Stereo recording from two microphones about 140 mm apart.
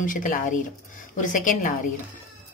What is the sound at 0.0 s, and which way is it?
Speech, 70° left (ahead or behind).